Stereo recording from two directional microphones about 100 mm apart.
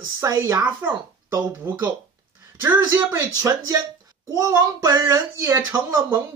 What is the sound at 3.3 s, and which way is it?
Speech, 35° right (ahead or behind).